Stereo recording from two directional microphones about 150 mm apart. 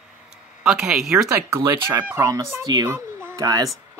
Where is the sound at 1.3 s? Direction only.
20° right (ahead or behind).